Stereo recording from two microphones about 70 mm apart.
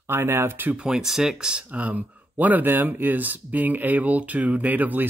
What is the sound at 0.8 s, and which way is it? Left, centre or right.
Speech, centre.